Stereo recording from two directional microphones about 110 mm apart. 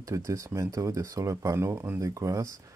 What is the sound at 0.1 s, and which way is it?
Speech, 30° right (ahead or behind).